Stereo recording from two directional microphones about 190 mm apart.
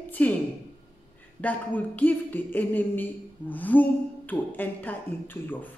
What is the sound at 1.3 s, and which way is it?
Speech, 10° left (ahead or behind).